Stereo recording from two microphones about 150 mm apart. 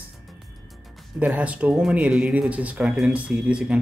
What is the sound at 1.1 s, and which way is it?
Speech, 10° right (ahead or behind).